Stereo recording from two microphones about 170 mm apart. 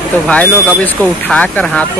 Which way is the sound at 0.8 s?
10° left (ahead or behind).